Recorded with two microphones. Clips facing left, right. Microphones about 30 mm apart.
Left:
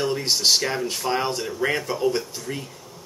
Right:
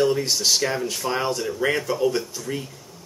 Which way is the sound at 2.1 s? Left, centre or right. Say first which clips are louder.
Even; centre.